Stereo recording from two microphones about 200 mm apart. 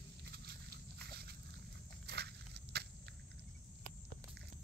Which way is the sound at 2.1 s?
55° right (ahead or behind).